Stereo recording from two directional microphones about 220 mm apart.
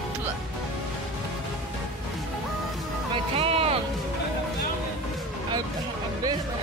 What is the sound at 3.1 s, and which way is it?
Music, 25° right (ahead or behind).